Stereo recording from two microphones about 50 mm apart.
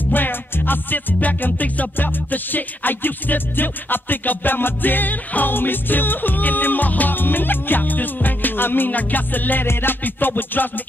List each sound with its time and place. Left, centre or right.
0.0 s music: left